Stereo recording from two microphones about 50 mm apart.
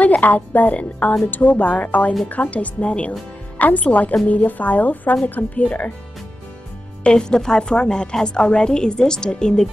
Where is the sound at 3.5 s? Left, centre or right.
Left.